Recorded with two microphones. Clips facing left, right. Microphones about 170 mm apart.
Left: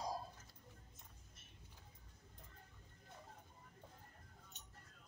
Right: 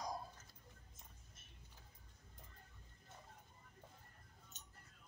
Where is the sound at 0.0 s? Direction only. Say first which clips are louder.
Left 1 dB; 25° left (ahead or behind).